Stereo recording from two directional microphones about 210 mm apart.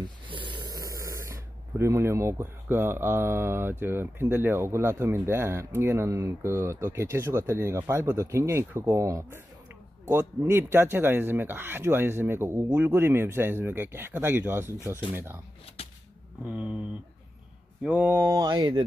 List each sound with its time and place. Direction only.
0.0 s a sound: 25° right (ahead or behind)
1.8 s speech: 10° right (ahead or behind)
16.4 s speech: 5° right (ahead or behind)
17.8 s speech: 10° right (ahead or behind)